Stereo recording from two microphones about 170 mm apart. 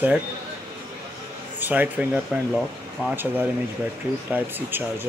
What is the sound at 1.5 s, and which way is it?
Speech, 10° right (ahead or behind).